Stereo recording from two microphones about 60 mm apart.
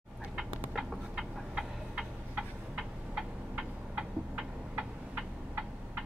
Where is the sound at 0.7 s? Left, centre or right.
Centre.